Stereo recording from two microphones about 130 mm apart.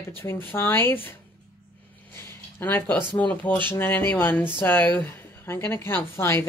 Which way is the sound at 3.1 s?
15° left (ahead or behind).